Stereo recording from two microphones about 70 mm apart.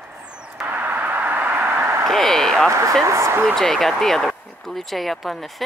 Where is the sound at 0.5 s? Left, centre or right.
Right.